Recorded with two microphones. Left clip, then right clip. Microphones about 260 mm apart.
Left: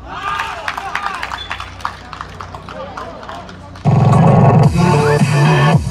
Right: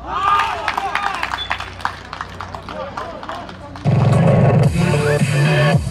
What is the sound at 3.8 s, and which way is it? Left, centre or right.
Music, centre.